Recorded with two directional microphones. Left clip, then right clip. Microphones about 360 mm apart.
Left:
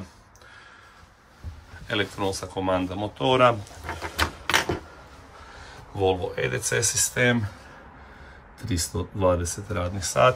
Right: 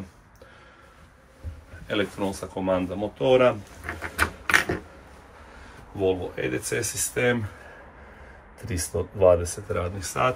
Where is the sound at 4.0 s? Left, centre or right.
Centre.